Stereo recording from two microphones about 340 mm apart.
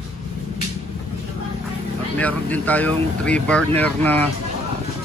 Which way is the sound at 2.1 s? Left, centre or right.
Centre.